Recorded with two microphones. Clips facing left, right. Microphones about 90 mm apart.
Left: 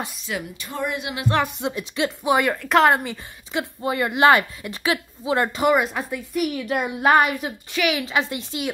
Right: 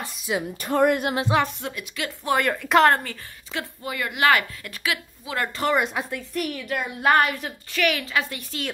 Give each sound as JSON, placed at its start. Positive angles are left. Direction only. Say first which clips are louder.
{"t": 0.6, "sound": "speech", "louder": "right 12 dB", "side_deg": -55}
{"t": 1.4, "sound": "speech", "louder": "left 2 dB", "side_deg": 20}
{"t": 2.5, "sound": "speech", "louder": "right 3 dB", "side_deg": 0}
{"t": 2.9, "sound": "a woman's voice", "louder": "left 2 dB", "side_deg": 15}
{"t": 3.8, "sound": "speech", "louder": "left 5 dB", "side_deg": 30}
{"t": 5.8, "sound": "a woman's voice", "louder": "left 1 dB", "side_deg": 0}